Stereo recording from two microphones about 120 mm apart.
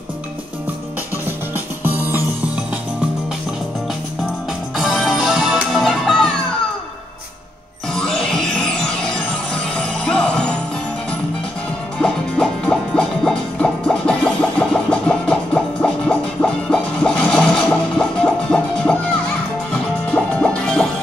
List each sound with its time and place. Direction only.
1.8 s music: 15° right (ahead or behind)
4.7 s music: centre (ahead or behind)
7.9 s music: 5° left (ahead or behind)
12.0 s music: 5° left (ahead or behind)